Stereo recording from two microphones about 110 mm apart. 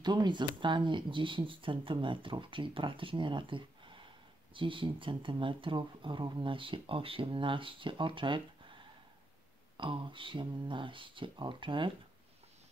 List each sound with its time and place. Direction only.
0.0 s speech: 40° right (ahead or behind)
9.8 s speech: 50° right (ahead or behind)